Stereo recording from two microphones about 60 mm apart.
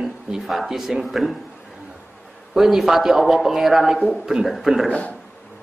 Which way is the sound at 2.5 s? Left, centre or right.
Centre.